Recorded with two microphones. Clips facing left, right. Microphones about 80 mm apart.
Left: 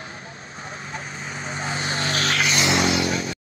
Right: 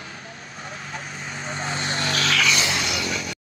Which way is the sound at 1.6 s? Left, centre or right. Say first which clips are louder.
Left 1 dB; right.